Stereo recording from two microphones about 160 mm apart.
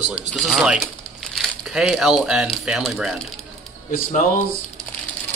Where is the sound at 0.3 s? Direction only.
Centre (ahead or behind).